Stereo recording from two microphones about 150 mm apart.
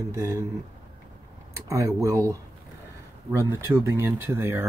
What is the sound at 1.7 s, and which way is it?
Speech, 20° right (ahead or behind).